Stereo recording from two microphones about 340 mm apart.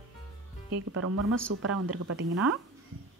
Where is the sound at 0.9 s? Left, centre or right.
Right.